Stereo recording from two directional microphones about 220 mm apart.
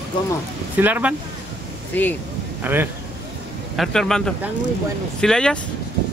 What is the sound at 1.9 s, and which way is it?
Speech, 10° left (ahead or behind).